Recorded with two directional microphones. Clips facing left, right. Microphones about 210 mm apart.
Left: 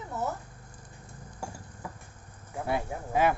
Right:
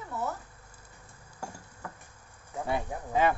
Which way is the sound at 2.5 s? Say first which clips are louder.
Left 1 dB; 5° left (ahead or behind).